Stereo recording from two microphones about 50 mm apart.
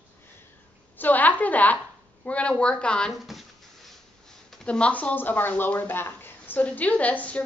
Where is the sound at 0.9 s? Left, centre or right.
Left.